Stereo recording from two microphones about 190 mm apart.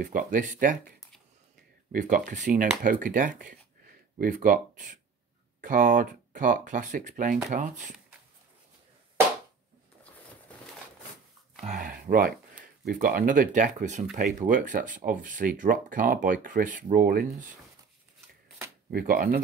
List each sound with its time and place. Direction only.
0.0 s speech: 45° right (ahead or behind)
11.6 s speech: 45° right (ahead or behind)
18.9 s speech: 50° right (ahead or behind)